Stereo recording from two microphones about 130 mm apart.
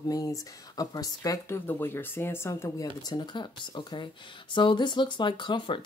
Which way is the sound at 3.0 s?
35° left (ahead or behind).